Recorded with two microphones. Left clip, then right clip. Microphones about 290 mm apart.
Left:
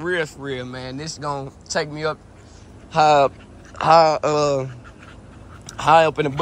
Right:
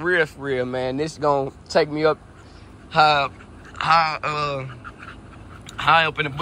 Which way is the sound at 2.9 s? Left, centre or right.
Centre.